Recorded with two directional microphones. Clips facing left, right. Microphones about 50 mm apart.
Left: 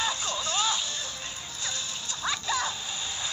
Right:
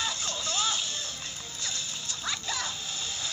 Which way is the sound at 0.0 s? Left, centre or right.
Left.